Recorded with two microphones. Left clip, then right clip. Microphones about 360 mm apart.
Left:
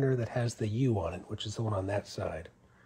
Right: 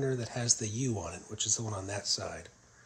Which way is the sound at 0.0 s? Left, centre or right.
Centre.